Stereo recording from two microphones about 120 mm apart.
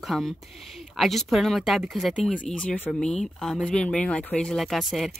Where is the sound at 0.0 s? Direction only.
Centre (ahead or behind).